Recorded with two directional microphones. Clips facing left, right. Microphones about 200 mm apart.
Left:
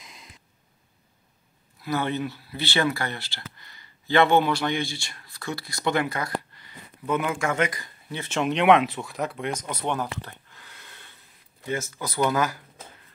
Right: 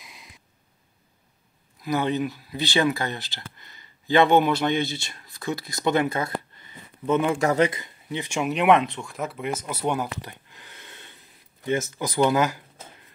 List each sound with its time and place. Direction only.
0.0 s a sound: centre (ahead or behind)
1.8 s speech: 15° right (ahead or behind)
7.3 s speech: 35° right (ahead or behind); by 10.0 s 10° right (ahead or behind)
10.2 s gasp: 20° right (ahead or behind)
11.6 s speech: 20° right (ahead or behind)